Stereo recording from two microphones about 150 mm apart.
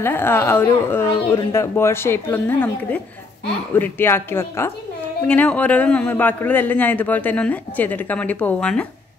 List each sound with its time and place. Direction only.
0.0 s a man's voice: 15° left (ahead or behind)